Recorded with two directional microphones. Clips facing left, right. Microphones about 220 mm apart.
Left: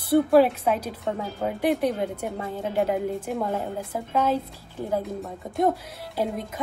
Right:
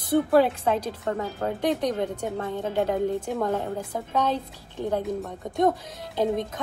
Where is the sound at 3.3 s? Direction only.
5° left (ahead or behind).